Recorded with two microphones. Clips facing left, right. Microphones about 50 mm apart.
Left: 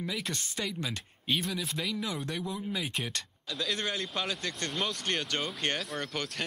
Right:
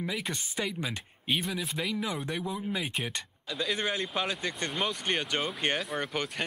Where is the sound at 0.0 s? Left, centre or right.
Centre.